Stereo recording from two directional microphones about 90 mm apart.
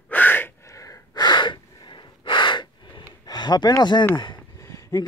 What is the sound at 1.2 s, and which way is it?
Gasp, 60° left (ahead or behind).